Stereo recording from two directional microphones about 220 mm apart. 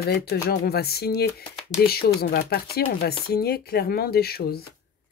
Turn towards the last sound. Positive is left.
turn(degrees=45)  # may be behind; listen again after turning